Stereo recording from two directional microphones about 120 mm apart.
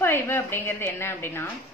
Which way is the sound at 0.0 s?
20° left (ahead or behind).